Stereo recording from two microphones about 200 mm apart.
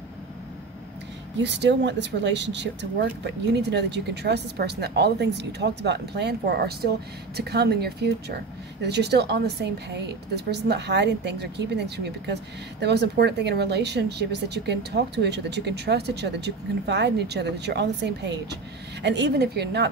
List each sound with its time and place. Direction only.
1.4 s speech: 60° right (ahead or behind)